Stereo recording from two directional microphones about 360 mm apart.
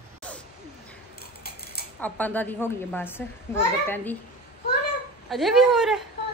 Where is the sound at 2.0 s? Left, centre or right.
Centre.